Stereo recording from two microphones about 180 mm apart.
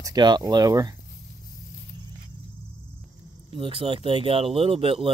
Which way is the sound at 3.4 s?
30° right (ahead or behind).